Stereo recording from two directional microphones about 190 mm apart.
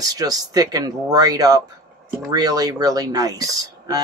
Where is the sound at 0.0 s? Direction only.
20° right (ahead or behind).